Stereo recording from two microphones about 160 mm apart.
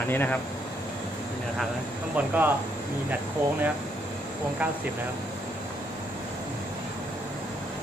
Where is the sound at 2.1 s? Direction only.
10° right (ahead or behind).